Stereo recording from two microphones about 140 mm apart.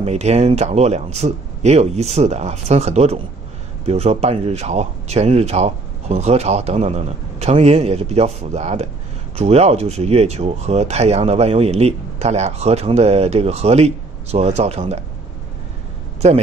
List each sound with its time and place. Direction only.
0.0 s speech: 50° right (ahead or behind)
16.2 s speech: 50° right (ahead or behind)